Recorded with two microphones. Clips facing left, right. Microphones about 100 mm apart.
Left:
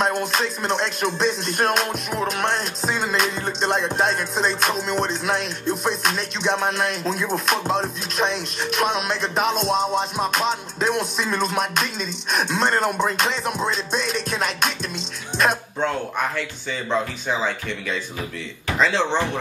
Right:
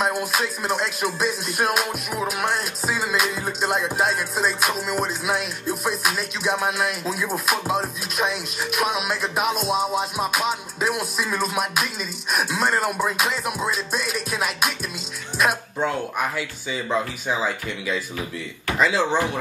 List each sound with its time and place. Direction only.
0.0 s music: 5° right (ahead or behind)
15.3 s speech: 5° right (ahead or behind)
16.9 s music: 5° right (ahead or behind)
18.8 s speech: 5° right (ahead or behind)